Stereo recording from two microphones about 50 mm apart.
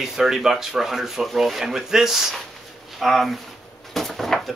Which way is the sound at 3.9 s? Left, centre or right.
Centre.